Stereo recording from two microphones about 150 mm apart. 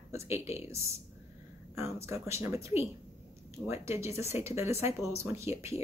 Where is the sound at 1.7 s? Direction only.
20° right (ahead or behind).